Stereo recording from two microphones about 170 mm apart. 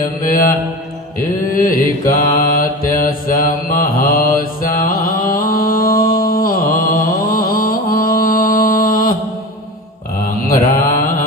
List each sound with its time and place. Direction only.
0.2 s mantra: 55° left (ahead or behind)
1.6 s mantra: 20° left (ahead or behind)
2.3 s mantra: 55° left (ahead or behind)
10.7 s mantra: 55° left (ahead or behind)